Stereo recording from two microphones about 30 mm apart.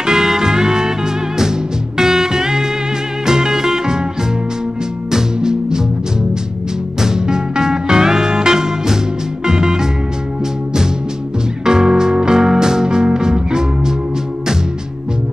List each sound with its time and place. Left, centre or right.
0.0 s music: centre
5.1 s music: right
7.0 s music: right
11.6 s music: right